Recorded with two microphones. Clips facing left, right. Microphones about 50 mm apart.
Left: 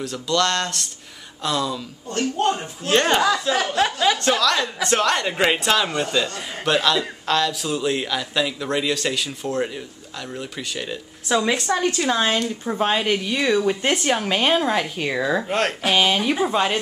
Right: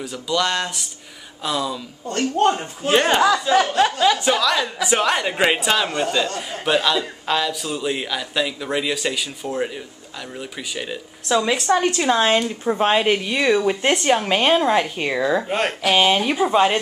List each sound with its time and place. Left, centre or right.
0.0 s speech: centre
2.0 s speech: right
2.5 s speech: centre
11.7 s speech: centre